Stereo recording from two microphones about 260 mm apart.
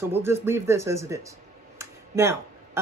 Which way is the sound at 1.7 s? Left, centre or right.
Centre.